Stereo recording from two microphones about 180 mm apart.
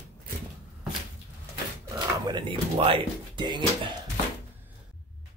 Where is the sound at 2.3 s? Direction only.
30° right (ahead or behind).